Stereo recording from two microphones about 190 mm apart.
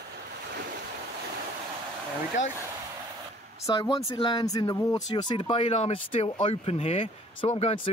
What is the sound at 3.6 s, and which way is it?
Speech, 20° left (ahead or behind).